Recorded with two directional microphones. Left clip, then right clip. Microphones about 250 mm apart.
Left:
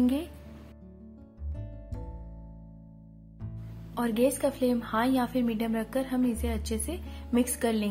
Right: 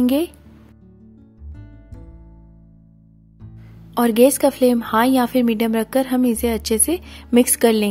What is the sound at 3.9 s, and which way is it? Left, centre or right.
A woman's voice, right.